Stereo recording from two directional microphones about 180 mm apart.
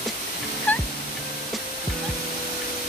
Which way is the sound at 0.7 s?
10° left (ahead or behind).